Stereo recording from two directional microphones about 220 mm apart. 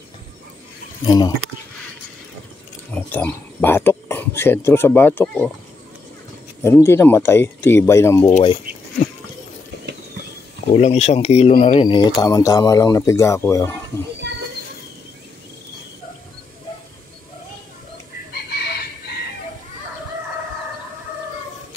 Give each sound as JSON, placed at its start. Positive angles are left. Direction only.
{"t": 1.0, "sound": "speech", "side_deg": 15}
{"t": 2.9, "sound": "speech", "side_deg": 10}
{"t": 6.6, "sound": "speech", "side_deg": 10}
{"t": 8.3, "sound": "speech", "side_deg": 30}
{"t": 10.7, "sound": "speech", "side_deg": 30}
{"t": 18.5, "sound": "chicken", "side_deg": 45}